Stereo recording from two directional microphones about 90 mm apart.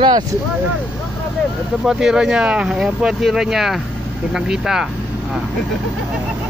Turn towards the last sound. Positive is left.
turn(degrees=-5)  # may be behind; listen again after turning